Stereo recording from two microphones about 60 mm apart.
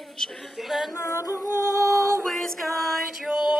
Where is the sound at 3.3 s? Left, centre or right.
Centre.